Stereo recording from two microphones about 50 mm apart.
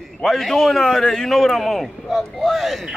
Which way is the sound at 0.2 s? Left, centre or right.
Centre.